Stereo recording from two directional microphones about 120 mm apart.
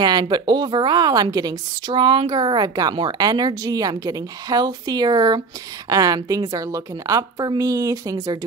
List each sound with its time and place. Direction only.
0.0 s a woman's voice: 35° right (ahead or behind)